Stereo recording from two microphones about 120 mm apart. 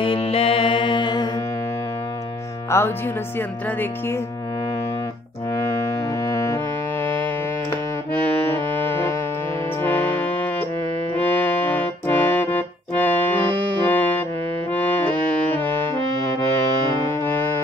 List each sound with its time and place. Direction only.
0.0 s mantra: 50° left (ahead or behind)
2.7 s speech: 25° left (ahead or behind)
6.3 s music: 25° left (ahead or behind)
9.8 s music: 15° left (ahead or behind)
17.1 s music: 20° left (ahead or behind)